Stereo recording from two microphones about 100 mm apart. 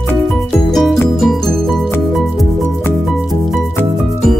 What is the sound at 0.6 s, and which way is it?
Music, centre (ahead or behind).